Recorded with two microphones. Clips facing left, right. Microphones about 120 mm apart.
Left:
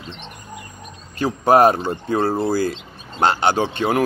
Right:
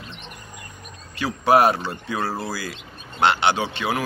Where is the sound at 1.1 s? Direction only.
45° left (ahead or behind).